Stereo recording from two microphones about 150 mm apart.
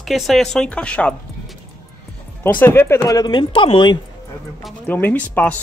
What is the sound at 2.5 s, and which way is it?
Speech, 15° left (ahead or behind).